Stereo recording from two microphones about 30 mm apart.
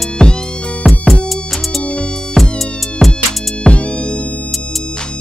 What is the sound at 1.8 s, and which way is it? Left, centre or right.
Music, left.